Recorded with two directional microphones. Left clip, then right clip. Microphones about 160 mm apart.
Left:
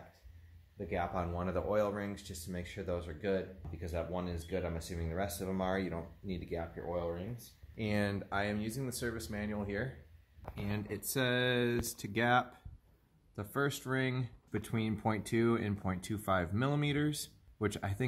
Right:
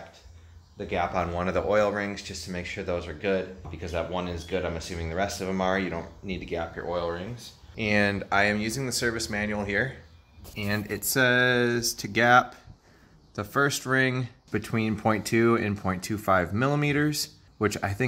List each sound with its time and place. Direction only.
0.7 s speech: 20° left (ahead or behind)
7.9 s speech: centre (ahead or behind)
11.1 s speech: centre (ahead or behind)